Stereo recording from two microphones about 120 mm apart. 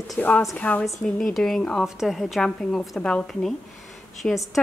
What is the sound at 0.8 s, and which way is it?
Speech, centre (ahead or behind).